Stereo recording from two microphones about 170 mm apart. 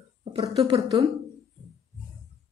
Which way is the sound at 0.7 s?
30° right (ahead or behind).